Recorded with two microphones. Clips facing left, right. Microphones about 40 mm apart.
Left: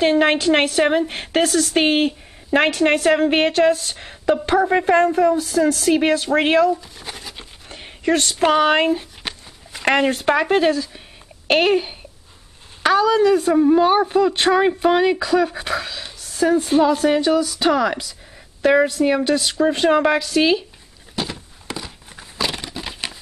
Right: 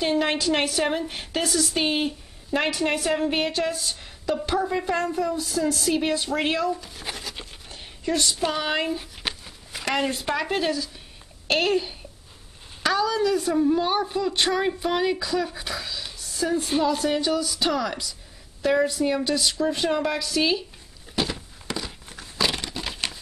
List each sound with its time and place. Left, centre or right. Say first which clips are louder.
0.0 s a woman's voice: left 7 dB; left
6.7 s speech: left 6 dB; centre
8.0 s a sound: left 7 dB; left
9.2 s walk: left 1 dB; centre
9.8 s a woman's voice: left 8 dB; left
10.4 s a woman's voice: left 8 dB; left
16.2 s a sound: left 8 dB; left
17.1 s a woman's voice: left 7 dB; left
21.1 s crumpling: even; centre